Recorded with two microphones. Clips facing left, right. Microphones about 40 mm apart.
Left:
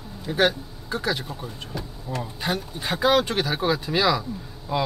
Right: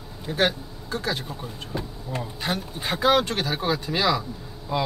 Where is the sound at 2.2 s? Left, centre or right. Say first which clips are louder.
Left 1 dB; centre.